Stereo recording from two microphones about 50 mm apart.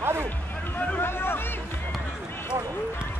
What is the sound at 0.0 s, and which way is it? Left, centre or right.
Music, right.